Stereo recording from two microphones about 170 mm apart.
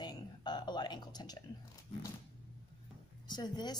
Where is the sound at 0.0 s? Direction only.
25° left (ahead or behind).